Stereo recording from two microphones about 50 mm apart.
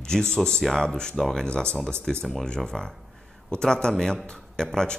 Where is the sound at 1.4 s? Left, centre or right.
Centre.